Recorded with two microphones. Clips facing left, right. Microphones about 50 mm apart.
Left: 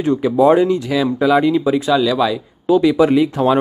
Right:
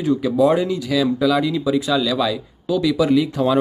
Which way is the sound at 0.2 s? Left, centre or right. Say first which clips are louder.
Left 7 dB; left.